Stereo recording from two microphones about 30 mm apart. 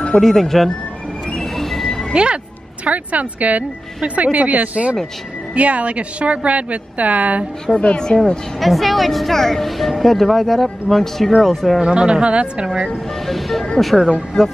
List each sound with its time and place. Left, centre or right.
0.2 s speech: centre
1.4 s a sound: centre
2.1 s a sound: right
2.9 s a woman's voice: right
7.7 s speech: left
8.5 s speech: centre
11.9 s speech: right
13.1 s speech: centre
14.3 s speech: centre